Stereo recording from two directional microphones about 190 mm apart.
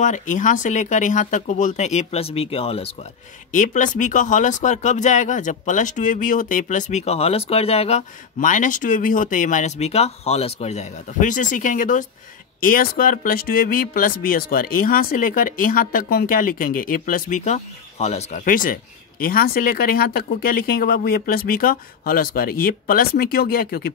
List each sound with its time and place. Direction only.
0.0 s speech: 40° left (ahead or behind)
3.5 s speech: 40° left (ahead or behind)
18.4 s speech: 45° left (ahead or behind)